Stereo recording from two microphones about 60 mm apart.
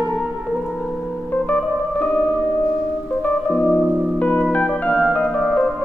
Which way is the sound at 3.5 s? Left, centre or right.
Centre.